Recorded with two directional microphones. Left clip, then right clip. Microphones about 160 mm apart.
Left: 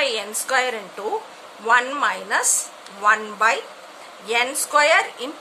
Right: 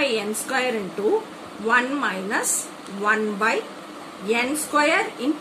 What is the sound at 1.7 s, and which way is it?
A woman's voice, 65° left (ahead or behind).